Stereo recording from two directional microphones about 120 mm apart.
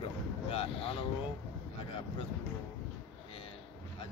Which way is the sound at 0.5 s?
50° left (ahead or behind).